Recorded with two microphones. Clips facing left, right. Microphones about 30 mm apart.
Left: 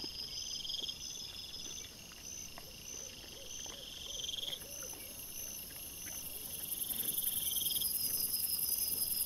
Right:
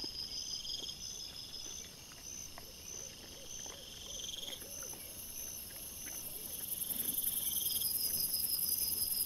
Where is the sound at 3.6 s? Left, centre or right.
Centre.